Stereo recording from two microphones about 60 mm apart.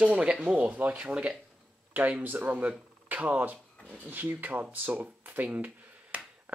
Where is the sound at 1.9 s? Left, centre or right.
Right.